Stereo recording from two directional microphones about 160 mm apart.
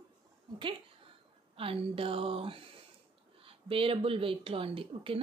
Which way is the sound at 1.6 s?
35° right (ahead or behind).